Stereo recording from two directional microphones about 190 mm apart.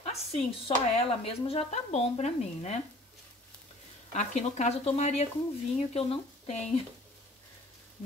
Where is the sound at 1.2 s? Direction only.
30° left (ahead or behind).